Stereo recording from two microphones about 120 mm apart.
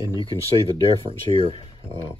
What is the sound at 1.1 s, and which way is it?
Speech, 50° right (ahead or behind).